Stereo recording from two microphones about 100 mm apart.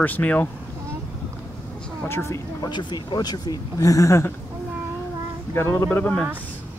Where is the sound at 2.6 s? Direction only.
50° left (ahead or behind); by 4.3 s 30° left (ahead or behind).